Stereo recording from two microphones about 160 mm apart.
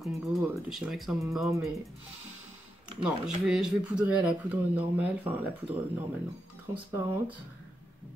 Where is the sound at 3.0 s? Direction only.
5° right (ahead or behind).